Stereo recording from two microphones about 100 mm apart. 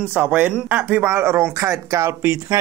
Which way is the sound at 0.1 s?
15° right (ahead or behind).